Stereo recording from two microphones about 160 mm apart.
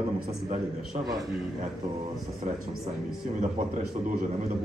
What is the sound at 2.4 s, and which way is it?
A man's voice, 50° right (ahead or behind).